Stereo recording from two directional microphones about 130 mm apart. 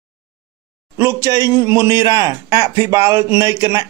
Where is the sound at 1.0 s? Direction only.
20° right (ahead or behind).